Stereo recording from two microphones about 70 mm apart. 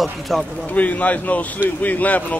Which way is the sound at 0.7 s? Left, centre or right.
Left.